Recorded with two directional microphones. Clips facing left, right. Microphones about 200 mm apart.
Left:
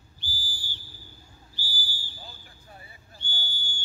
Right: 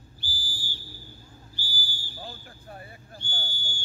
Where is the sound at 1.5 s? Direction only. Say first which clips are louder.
Even; 10° right (ahead or behind).